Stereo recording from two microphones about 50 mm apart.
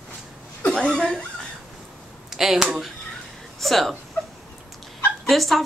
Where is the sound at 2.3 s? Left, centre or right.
Centre.